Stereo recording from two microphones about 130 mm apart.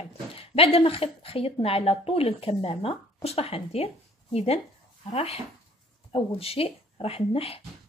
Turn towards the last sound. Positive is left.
turn(degrees=50)  # may be behind; listen again after turning